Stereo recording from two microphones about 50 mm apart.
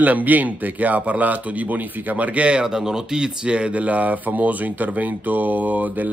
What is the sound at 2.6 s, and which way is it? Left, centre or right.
Speech, centre.